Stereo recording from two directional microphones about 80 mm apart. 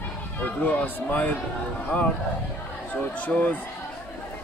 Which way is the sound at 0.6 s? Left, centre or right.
Centre.